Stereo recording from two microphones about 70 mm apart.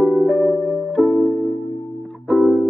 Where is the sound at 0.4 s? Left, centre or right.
Left.